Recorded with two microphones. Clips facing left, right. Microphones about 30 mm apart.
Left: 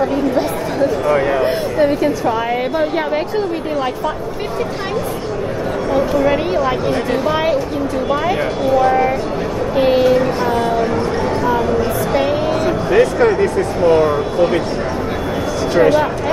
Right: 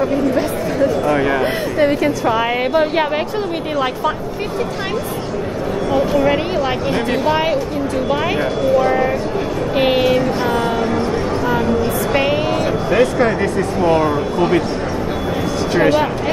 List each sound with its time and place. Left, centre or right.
9.8 s a sound: right
12.6 s speech: centre
15.7 s speech: right